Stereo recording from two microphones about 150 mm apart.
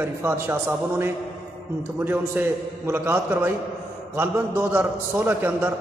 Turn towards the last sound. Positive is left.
turn(degrees=-15)  # may be behind; listen again after turning